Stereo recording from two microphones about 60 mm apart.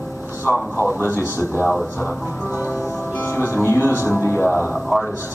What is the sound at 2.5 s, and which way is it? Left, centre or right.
A man's voice, left.